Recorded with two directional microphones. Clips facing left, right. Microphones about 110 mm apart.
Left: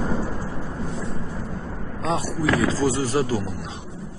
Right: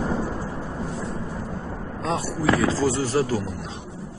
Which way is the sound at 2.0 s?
15° left (ahead or behind).